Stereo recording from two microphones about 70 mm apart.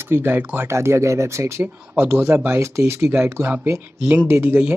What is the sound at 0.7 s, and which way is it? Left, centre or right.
Speech, right.